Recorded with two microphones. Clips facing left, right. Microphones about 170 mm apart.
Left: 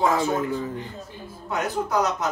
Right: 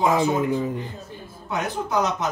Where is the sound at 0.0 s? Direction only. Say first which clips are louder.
Right 2 dB; 15° right (ahead or behind).